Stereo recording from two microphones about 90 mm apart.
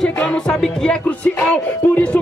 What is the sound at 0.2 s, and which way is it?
A man's voice, 10° left (ahead or behind).